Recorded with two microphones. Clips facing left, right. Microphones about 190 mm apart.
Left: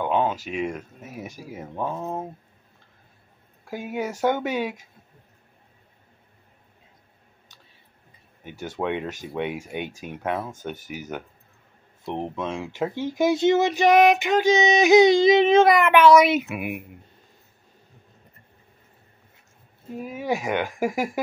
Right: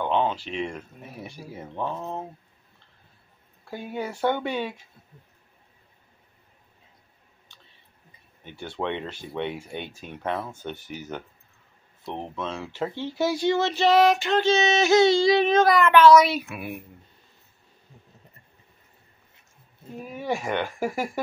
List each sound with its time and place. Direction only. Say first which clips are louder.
0.0 s female singing: left 1 dB; 5° left (ahead or behind)
3.6 s speech: left 3 dB; 10° left (ahead or behind)
4.2 s female singing: left 2 dB; 10° left (ahead or behind)
8.6 s female singing: left 3 dB; 10° left (ahead or behind)
12.0 s female singing: left 4 dB; 15° left (ahead or behind)
20.1 s female singing: left 2 dB; 10° left (ahead or behind)